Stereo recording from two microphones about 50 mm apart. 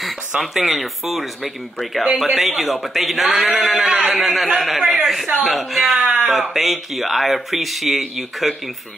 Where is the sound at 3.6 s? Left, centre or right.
Centre.